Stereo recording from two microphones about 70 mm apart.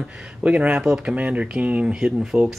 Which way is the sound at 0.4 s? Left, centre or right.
Centre.